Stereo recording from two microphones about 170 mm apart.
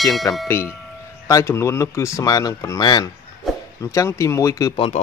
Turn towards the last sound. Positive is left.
turn(degrees=30)  # may be behind; listen again after turning